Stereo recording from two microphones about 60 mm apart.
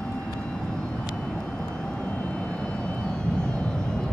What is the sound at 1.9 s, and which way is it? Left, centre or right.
Vehicle, centre.